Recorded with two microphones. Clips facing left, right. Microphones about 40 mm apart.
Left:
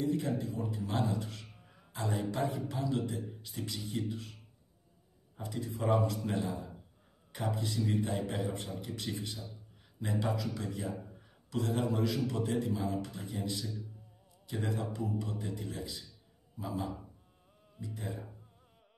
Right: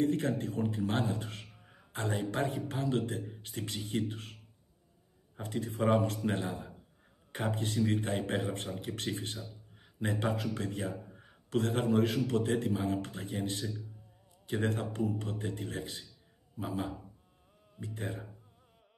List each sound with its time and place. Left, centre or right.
0.0 s a man's voice: right
5.4 s a man's voice: right